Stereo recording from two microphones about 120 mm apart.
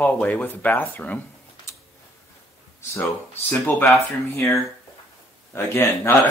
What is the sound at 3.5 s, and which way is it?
Speech, 15° left (ahead or behind).